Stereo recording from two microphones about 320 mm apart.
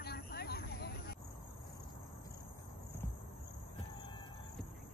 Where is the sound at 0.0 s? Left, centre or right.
Left.